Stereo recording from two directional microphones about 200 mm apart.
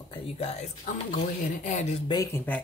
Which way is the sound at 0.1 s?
30° left (ahead or behind).